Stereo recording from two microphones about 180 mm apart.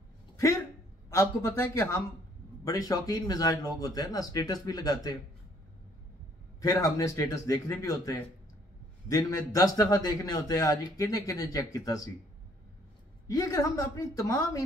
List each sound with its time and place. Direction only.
1.1 s a man's voice: 15° left (ahead or behind)
6.6 s a man's voice: 20° left (ahead or behind)
13.3 s a man's voice: 15° left (ahead or behind)